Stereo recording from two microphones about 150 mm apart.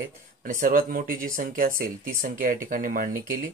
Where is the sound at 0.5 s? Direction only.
70° right (ahead or behind).